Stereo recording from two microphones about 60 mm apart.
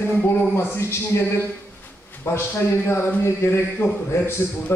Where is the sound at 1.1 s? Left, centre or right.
Left.